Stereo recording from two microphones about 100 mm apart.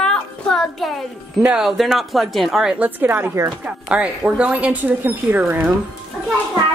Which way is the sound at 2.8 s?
20° right (ahead or behind).